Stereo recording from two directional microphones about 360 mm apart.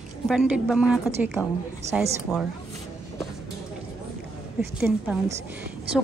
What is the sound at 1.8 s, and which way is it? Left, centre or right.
Speech, centre.